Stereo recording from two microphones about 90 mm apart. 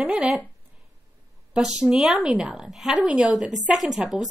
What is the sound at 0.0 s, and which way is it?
Speech, 10° right (ahead or behind).